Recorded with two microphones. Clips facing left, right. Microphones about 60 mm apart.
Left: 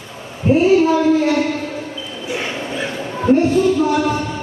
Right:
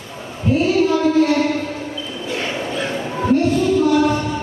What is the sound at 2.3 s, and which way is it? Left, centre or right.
Bow-wow, centre.